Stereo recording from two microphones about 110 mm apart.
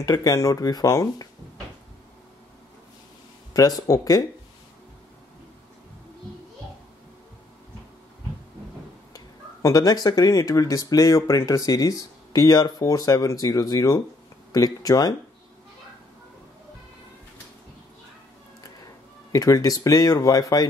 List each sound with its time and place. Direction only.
0.0 s speech: 35° left (ahead or behind)
3.5 s speech: 35° left (ahead or behind)
9.1 s speech: 30° left (ahead or behind)
19.3 s speech: 35° left (ahead or behind)